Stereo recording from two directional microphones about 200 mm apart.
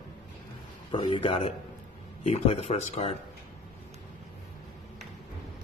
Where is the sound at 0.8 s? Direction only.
25° left (ahead or behind).